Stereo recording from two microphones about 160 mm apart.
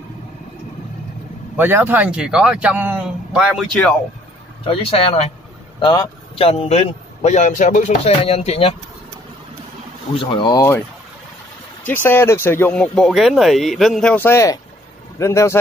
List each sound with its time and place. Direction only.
1.6 s speech: 10° right (ahead or behind)
4.6 s a man's voice: 35° left (ahead or behind)
8.1 s a man's voice: 35° left (ahead or behind)
10.1 s speech: 30° left (ahead or behind)
11.8 s speech: 15° left (ahead or behind)
14.1 s speech: 15° left (ahead or behind)